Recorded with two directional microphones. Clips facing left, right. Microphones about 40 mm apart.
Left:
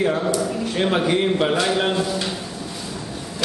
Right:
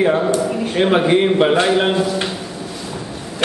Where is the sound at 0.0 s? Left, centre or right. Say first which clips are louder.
Right 5 dB; right.